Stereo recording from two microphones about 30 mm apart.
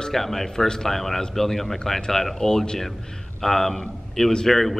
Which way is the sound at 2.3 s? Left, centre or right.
Left.